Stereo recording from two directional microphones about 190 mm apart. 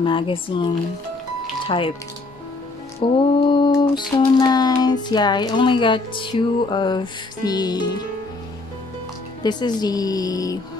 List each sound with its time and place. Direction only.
0.0 s speech: 25° left (ahead or behind)
1.7 s speech: 30° left (ahead or behind)
3.0 s speech: 30° left (ahead or behind)
9.4 s speech: 20° left (ahead or behind)